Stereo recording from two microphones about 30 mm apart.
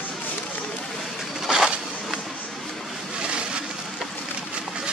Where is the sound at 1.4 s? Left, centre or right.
Right.